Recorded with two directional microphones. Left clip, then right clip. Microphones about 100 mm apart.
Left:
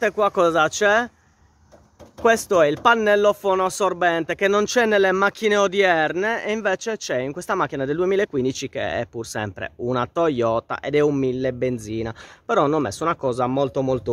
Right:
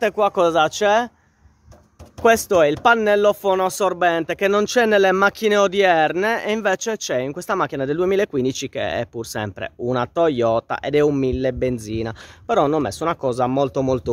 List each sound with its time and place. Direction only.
0.0 s speech: 10° right (ahead or behind)
2.2 s speech: 25° right (ahead or behind)
6.1 s speech: 35° right (ahead or behind)